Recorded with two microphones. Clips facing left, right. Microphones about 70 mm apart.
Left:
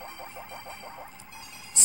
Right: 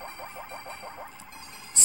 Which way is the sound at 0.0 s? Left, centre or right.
Right.